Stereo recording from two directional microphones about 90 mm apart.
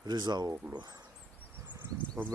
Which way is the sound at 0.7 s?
45° right (ahead or behind).